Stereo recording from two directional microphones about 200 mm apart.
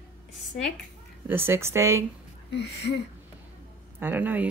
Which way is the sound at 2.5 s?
60° left (ahead or behind).